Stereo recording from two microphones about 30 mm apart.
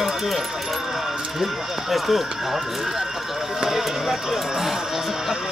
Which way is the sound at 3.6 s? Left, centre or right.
Centre.